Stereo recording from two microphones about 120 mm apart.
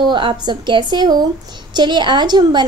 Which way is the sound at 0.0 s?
45° right (ahead or behind).